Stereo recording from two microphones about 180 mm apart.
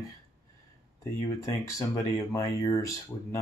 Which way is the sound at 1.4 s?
15° left (ahead or behind).